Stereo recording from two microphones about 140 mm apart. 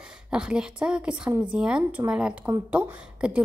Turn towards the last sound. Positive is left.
turn(degrees=-10)  # may be behind; listen again after turning